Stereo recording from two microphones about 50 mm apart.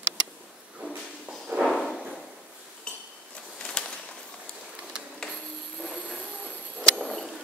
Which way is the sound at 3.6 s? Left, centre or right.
Centre.